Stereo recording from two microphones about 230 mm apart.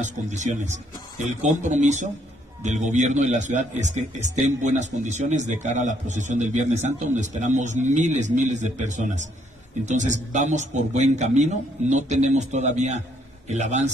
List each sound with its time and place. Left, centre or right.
0.0 s a man's voice: right